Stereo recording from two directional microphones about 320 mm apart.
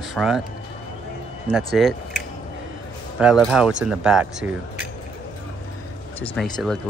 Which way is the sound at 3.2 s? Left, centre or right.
Centre.